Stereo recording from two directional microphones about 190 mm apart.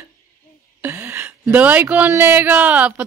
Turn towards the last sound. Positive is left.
turn(degrees=-5)  # may be behind; listen again after turning